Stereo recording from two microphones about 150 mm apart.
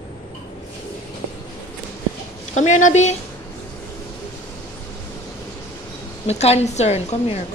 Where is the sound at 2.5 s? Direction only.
55° left (ahead or behind).